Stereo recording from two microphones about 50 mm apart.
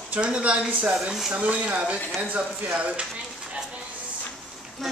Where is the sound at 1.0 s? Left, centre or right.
Centre.